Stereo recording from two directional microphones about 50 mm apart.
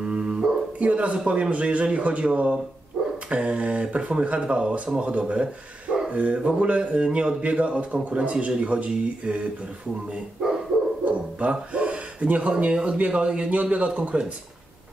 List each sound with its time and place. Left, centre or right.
0.0 s music: centre
0.7 s a man's voice: right
11.1 s speech: right